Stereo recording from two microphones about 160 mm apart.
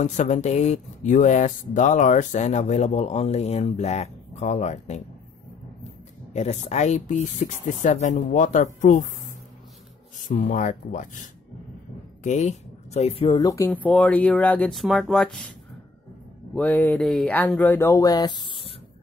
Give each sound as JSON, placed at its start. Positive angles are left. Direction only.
{"t": 0.0, "sound": "speech", "side_deg": 50}
{"t": 6.3, "sound": "speech", "side_deg": 45}
{"t": 10.1, "sound": "speech", "side_deg": 55}
{"t": 13.8, "sound": "speech", "side_deg": 10}
{"t": 16.5, "sound": "speech", "side_deg": 10}